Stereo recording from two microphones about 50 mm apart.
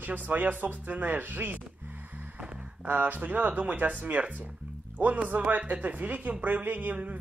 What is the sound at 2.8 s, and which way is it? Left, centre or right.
Speech, right.